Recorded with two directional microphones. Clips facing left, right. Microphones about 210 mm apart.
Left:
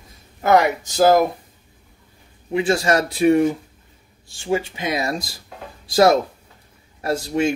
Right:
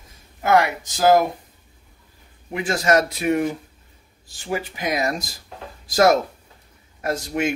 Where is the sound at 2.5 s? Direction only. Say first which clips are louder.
Left 1 dB; 30° left (ahead or behind).